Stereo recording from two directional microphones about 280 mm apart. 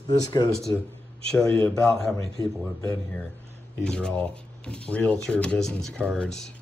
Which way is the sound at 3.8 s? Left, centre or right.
Centre.